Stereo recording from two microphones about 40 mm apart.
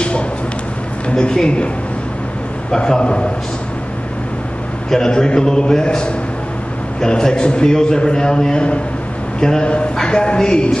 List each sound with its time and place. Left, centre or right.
1.1 s a man's voice: centre
2.8 s a man's voice: left
4.8 s a man's voice: centre